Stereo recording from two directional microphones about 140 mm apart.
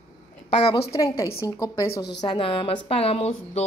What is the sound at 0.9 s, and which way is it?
A woman's voice, 25° left (ahead or behind).